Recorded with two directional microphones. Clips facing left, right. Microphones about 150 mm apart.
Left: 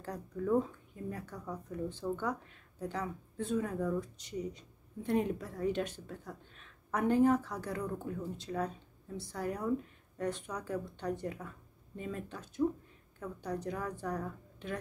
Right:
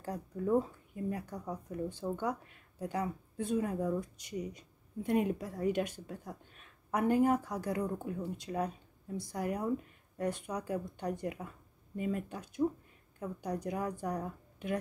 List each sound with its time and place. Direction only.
0.0 s speech: 10° right (ahead or behind)